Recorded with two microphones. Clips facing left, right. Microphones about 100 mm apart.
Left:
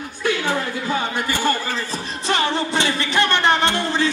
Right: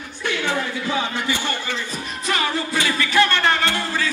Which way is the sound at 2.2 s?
30° left (ahead or behind).